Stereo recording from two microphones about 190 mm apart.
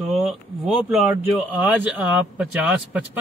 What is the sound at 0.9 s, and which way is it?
A man's voice, centre (ahead or behind).